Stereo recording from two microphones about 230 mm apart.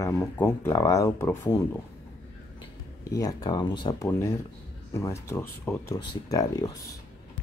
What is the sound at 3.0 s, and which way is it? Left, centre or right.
Speech, centre.